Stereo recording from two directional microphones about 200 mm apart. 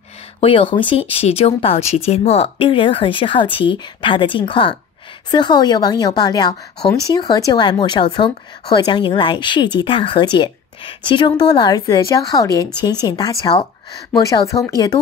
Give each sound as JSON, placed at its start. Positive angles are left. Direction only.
{"t": 0.4, "sound": "a woman's voice", "side_deg": 25}